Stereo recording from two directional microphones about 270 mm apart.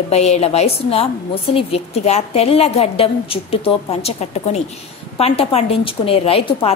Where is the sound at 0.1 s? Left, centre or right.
Left.